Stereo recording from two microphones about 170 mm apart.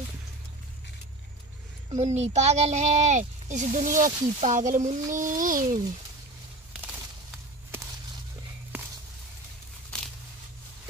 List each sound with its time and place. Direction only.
1.9 s speech: 40° right (ahead or behind)